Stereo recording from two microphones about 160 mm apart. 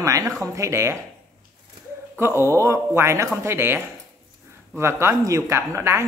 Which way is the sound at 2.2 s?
15° right (ahead or behind).